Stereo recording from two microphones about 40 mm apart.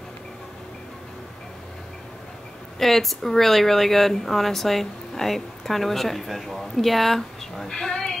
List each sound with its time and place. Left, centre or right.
2.8 s speech: centre
7.7 s a woman's voice: centre